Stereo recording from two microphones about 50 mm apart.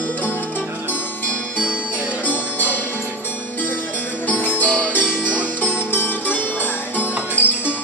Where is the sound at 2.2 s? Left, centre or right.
Left.